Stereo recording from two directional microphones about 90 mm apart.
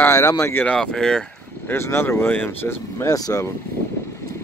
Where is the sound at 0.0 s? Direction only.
35° left (ahead or behind).